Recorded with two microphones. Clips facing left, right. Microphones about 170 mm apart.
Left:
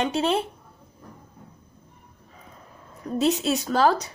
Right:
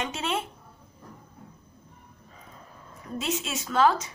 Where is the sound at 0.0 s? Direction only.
35° left (ahead or behind).